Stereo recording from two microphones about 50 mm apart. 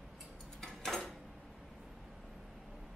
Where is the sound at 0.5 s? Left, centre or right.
Centre.